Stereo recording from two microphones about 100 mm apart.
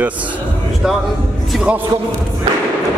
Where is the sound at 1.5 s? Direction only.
Centre (ahead or behind).